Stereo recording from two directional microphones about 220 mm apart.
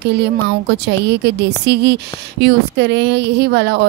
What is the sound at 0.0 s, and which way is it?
A woman's voice, 50° right (ahead or behind).